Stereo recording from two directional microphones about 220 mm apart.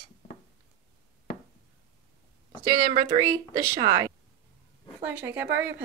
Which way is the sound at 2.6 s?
25° right (ahead or behind).